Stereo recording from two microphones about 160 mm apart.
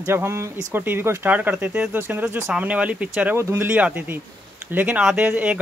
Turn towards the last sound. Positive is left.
turn(degrees=-10)  # may be behind; listen again after turning